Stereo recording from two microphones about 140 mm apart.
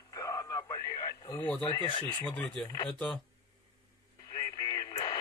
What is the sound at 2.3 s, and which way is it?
Speech, 5° left (ahead or behind).